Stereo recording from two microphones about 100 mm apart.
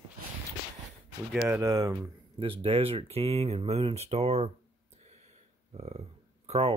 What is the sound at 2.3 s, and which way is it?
Speech, 65° right (ahead or behind).